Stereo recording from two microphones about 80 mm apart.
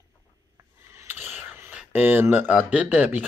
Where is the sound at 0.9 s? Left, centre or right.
Right.